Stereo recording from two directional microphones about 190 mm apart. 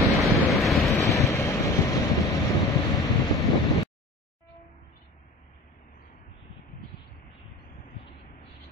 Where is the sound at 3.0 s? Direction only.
20° left (ahead or behind).